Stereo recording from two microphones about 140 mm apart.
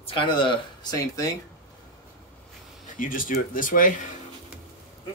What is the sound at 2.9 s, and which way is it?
Speech, 75° left (ahead or behind).